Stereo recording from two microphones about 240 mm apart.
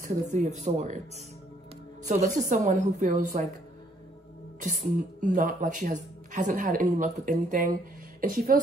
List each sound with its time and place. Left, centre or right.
0.0 s speech: right
5.2 s speech: right